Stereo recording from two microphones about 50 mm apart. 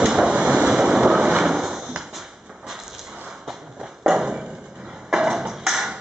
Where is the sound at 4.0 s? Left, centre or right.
Centre.